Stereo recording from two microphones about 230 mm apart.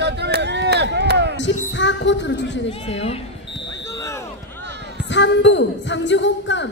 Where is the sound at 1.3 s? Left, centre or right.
Left.